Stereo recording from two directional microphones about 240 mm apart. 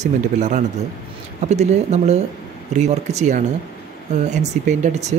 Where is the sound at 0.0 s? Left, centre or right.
Right.